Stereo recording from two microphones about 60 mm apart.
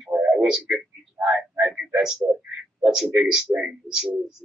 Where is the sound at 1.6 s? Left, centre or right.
Right.